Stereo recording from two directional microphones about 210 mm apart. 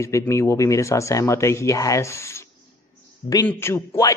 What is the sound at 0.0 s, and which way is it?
A woman's voice, 15° left (ahead or behind).